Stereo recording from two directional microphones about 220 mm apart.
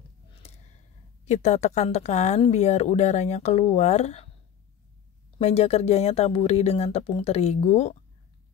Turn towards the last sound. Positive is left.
turn(degrees=30)  # may be behind; listen again after turning